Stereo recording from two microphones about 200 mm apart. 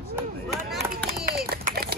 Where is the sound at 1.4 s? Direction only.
50° right (ahead or behind).